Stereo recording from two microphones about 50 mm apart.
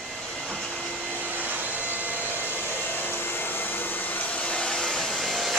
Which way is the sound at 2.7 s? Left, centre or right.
Left.